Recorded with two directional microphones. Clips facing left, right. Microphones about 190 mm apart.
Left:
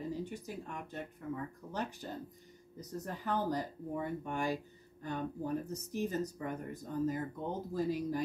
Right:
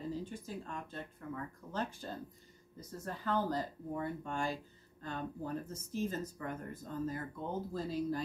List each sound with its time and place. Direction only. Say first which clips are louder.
0.2 s speech: left 2 dB; 15° left (ahead or behind)